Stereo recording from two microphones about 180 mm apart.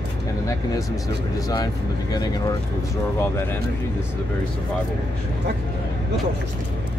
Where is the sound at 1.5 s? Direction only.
20° left (ahead or behind).